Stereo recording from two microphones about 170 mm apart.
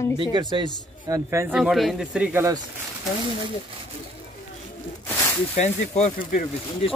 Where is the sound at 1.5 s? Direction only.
Centre (ahead or behind).